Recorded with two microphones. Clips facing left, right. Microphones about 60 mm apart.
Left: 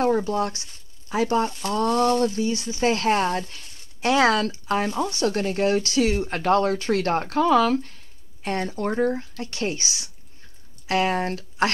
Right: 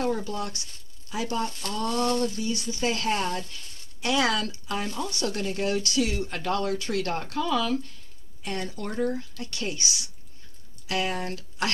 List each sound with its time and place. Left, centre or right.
0.0 s speech: left
1.5 s speech: centre
1.8 s speech: left
2.9 s speech: left
5.2 s speech: left